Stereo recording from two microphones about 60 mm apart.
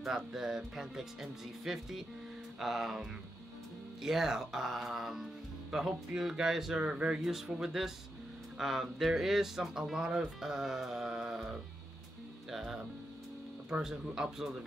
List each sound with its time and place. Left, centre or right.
0.0 s speech: centre
6.8 s speech: centre
7.2 s speech: centre